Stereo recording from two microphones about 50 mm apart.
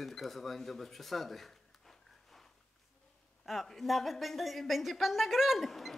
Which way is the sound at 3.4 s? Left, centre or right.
Centre.